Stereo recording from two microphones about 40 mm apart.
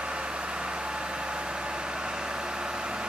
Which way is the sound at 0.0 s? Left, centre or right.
Right.